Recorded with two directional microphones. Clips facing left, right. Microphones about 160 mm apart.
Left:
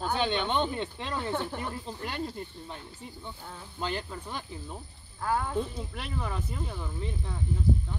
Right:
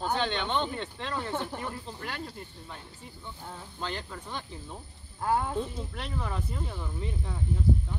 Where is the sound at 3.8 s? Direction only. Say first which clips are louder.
Left 3 dB; 15° left (ahead or behind).